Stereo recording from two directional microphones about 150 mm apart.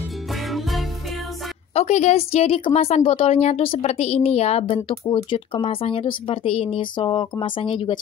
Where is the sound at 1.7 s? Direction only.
50° left (ahead or behind).